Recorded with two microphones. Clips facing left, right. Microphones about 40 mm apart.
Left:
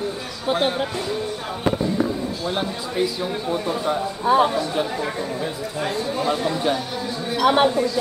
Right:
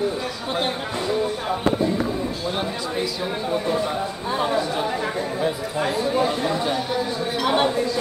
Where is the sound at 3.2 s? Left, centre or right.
Centre.